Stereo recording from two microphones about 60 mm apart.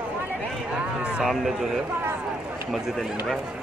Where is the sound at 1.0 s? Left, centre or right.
Right.